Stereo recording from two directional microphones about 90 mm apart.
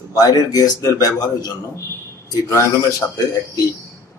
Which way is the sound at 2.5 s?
35° left (ahead or behind).